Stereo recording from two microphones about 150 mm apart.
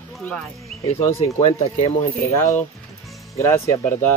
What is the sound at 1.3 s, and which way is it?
Speech, 45° left (ahead or behind).